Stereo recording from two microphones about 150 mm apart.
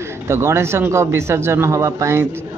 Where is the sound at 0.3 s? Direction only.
15° right (ahead or behind).